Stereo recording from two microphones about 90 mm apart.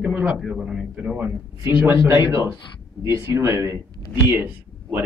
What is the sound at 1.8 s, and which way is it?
Speech, 25° right (ahead or behind).